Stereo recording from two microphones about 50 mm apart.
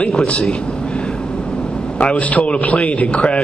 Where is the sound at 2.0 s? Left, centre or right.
Left.